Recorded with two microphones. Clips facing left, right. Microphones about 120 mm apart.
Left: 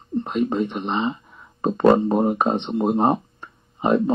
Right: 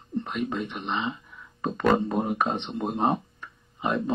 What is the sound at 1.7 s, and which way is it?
Speech, 30° left (ahead or behind).